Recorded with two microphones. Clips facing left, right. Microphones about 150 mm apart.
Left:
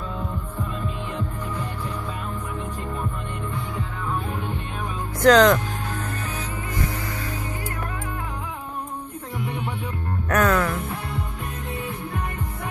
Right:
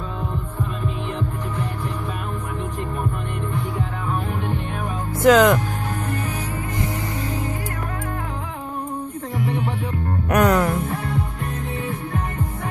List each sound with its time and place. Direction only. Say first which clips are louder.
5.2 s speech: right 1 dB; 10° right (ahead or behind)
10.3 s music: right 3 dB; 15° right (ahead or behind)